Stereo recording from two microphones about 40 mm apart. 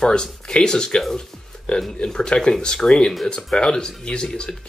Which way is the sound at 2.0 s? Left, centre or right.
Centre.